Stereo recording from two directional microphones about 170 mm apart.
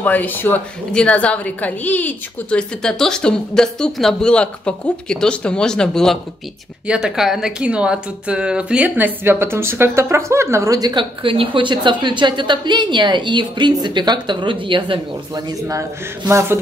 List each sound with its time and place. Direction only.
0.0 s a woman's voice: 10° left (ahead or behind); by 15.5 s 25° right (ahead or behind)
16.3 s speech: 15° right (ahead or behind)